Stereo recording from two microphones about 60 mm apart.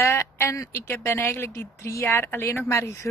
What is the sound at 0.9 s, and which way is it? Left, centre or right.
Speech, left.